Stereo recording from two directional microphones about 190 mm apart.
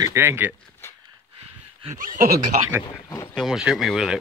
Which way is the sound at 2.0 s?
45° right (ahead or behind).